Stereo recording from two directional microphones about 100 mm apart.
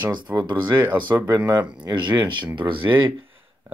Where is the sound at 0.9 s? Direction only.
50° right (ahead or behind).